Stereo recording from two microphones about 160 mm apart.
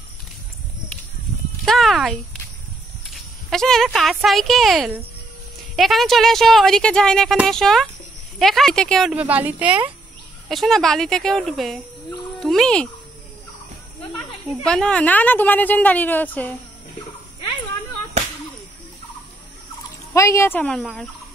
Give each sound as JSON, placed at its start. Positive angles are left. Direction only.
{"t": 1.6, "sound": "a woman's voice", "side_deg": 0}
{"t": 9.1, "sound": "a woman's voice", "side_deg": -10}
{"t": 10.5, "sound": "a woman's voice", "side_deg": 0}
{"t": 12.4, "sound": "music", "side_deg": 0}
{"t": 14.6, "sound": "a woman's voice", "side_deg": 5}
{"t": 20.1, "sound": "a woman's voice", "side_deg": 15}